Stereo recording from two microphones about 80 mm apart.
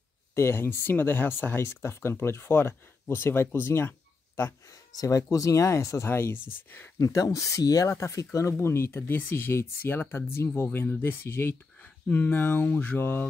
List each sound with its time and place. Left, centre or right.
0.3 s speech: left
4.6 s speech: left